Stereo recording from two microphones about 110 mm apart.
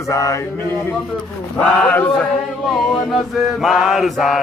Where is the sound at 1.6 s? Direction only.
10° left (ahead or behind).